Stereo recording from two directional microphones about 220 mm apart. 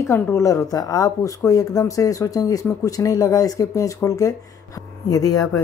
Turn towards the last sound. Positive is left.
turn(degrees=15)  # may be behind; listen again after turning